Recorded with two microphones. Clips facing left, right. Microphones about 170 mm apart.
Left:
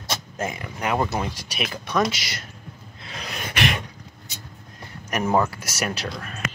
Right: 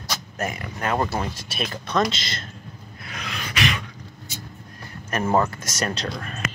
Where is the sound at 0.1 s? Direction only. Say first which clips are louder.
Even; 20° left (ahead or behind).